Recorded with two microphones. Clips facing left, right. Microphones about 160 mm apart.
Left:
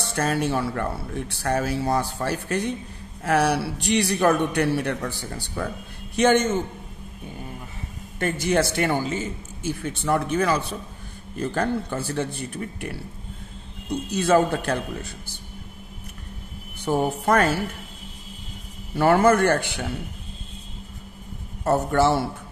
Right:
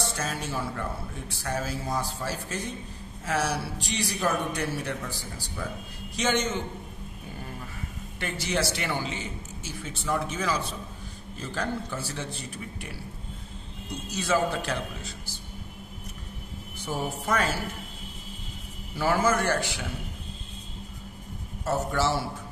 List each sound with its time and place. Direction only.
0.0 s speech: 60° left (ahead or behind)
6.1 s a man's voice: 55° left (ahead or behind)
8.2 s speech: 50° left (ahead or behind)
14.1 s speech: 55° left (ahead or behind)
16.8 s speech: 60° left (ahead or behind)
18.9 s speech: 60° left (ahead or behind)
21.6 s speech: 55° left (ahead or behind)